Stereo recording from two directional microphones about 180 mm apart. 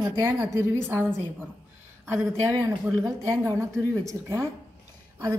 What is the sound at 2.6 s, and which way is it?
A woman's voice, 20° right (ahead or behind).